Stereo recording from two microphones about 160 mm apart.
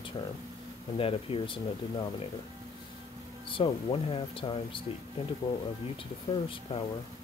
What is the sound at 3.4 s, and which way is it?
Speech, 35° left (ahead or behind).